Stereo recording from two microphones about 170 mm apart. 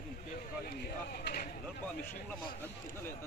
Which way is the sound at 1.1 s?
65° left (ahead or behind).